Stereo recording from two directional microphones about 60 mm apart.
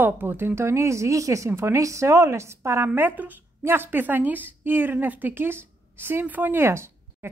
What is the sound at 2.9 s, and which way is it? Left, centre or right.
A woman's voice, right.